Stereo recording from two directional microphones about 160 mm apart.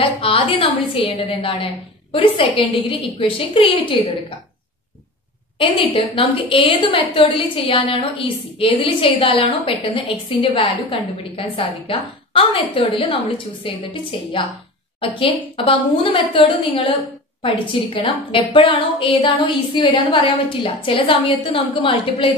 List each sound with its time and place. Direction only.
0.0 s a woman's voice: 35° left (ahead or behind)
5.6 s a woman's voice: 35° left (ahead or behind)
15.0 s a woman's voice: 35° left (ahead or behind)